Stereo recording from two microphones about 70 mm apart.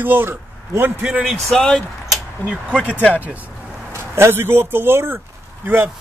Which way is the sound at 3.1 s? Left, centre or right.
Right.